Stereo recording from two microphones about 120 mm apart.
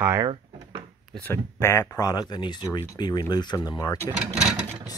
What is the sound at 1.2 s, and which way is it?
Speech, 20° left (ahead or behind).